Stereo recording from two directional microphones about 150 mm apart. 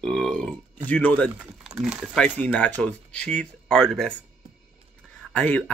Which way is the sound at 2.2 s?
10° left (ahead or behind).